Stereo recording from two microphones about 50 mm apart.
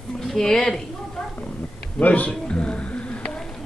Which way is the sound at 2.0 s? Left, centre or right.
Left.